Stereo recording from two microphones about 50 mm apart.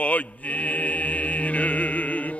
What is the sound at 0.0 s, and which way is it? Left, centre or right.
Mantra, left.